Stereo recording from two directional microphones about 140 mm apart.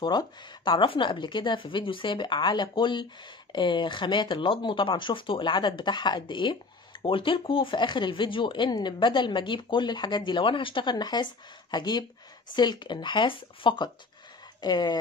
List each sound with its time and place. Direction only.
0.0 s speech: 30° left (ahead or behind)